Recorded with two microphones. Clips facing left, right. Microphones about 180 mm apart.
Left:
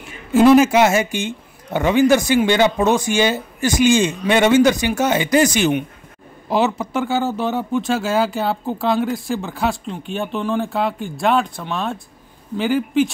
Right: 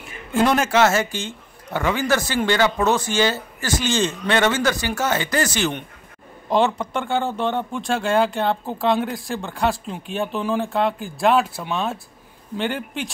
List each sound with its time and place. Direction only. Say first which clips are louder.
0.3 s speech: left 8 dB; 5° left (ahead or behind)